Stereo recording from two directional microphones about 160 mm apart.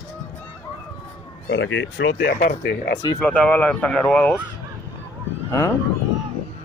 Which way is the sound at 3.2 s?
10° left (ahead or behind).